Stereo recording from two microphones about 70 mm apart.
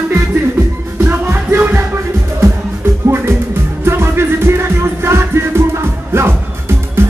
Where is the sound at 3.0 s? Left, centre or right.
Right.